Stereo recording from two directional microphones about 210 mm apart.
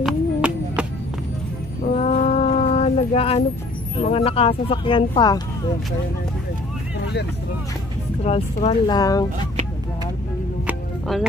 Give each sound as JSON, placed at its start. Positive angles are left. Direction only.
{"t": 0.0, "sound": "a sound", "side_deg": -5}
{"t": 2.0, "sound": "mantra", "side_deg": 30}
{"t": 3.9, "sound": "speech", "side_deg": 30}
{"t": 8.2, "sound": "speech", "side_deg": 30}
{"t": 8.8, "sound": "speech", "side_deg": 20}
{"t": 10.7, "sound": "music", "side_deg": 0}